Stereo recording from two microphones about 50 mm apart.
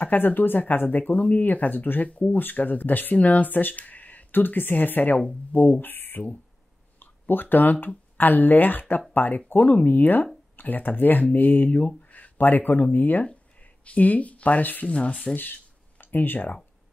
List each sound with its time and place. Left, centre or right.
0.0 s speech: left
5.8 s speech: left
14.9 s speech: left
16.0 s speech: left